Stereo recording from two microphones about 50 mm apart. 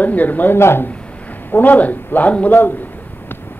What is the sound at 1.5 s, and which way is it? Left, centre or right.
A man's voice, left.